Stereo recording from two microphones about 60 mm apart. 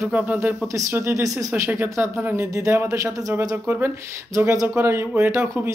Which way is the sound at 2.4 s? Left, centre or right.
Right.